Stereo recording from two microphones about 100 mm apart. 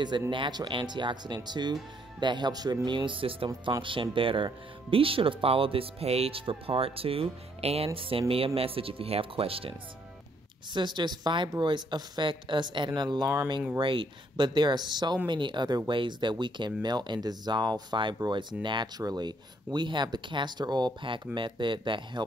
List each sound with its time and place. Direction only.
0.3 s speech: 50° right (ahead or behind); by 9.8 s 70° right (ahead or behind)
10.7 s speech: 50° right (ahead or behind)
13.7 s speech: 60° right (ahead or behind)